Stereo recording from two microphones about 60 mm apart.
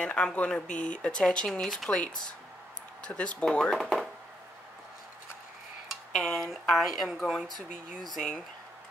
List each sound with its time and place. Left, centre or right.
0.0 s speech: centre
1.9 s speech: centre
3.7 s speech: centre
6.1 s speech: centre
6.4 s speech: centre